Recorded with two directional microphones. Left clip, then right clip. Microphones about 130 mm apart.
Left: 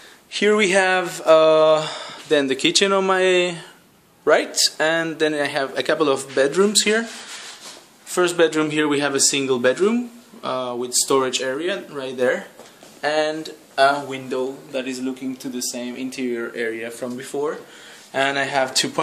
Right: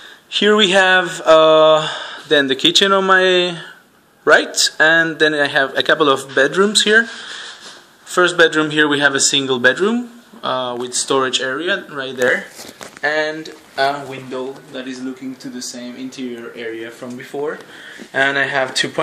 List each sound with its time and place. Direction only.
0.4 s a man's voice: centre (ahead or behind)
8.1 s speech: 10° left (ahead or behind)
14.3 s speech: 35° left (ahead or behind)
15.6 s speech: 50° left (ahead or behind)
17.0 s speech: 20° left (ahead or behind)
18.1 s speech: 5° left (ahead or behind)